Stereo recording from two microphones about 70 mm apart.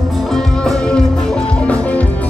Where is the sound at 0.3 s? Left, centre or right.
Centre.